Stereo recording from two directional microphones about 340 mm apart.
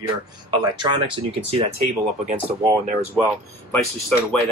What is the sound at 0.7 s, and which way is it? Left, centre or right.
Speech, centre.